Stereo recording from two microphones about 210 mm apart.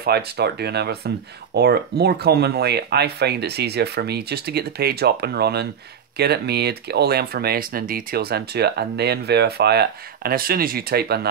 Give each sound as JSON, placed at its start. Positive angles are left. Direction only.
{"t": 0.0, "sound": "speech", "side_deg": -50}